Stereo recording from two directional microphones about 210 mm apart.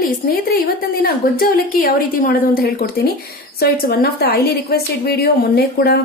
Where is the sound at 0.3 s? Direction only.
45° left (ahead or behind).